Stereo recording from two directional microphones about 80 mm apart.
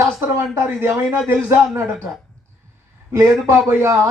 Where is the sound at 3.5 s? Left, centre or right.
Right.